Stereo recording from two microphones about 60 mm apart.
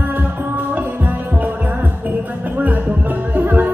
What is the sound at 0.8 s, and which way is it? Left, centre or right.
Music, right.